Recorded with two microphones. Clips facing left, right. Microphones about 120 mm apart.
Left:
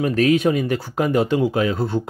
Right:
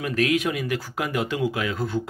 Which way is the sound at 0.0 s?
35° left (ahead or behind).